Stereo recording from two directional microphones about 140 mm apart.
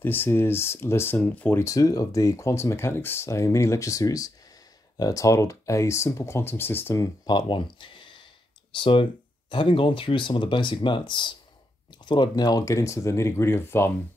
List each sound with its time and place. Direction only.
0.0 s speech: 15° left (ahead or behind)
1.6 s speech: 25° left (ahead or behind)
7.2 s speech: 35° left (ahead or behind); by 13.9 s 15° left (ahead or behind)